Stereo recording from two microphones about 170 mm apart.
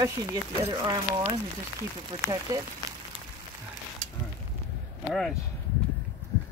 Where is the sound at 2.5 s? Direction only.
20° right (ahead or behind).